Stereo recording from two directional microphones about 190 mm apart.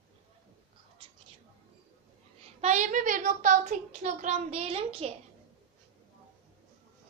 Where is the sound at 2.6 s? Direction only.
40° right (ahead or behind).